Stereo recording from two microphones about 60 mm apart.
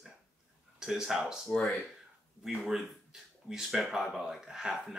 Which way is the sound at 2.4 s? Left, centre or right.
Centre.